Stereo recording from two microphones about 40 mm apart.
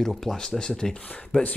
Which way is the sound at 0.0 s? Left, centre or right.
Centre.